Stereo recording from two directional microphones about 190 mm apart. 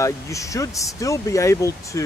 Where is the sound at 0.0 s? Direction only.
15° left (ahead or behind).